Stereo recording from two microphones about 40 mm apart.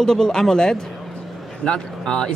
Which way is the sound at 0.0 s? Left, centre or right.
Centre.